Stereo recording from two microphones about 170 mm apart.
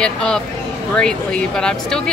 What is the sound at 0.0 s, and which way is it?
A woman's voice, 5° left (ahead or behind).